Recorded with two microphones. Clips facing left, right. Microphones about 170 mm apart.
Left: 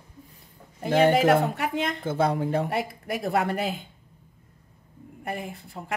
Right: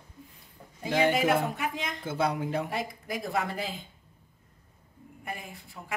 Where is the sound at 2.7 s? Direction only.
65° left (ahead or behind).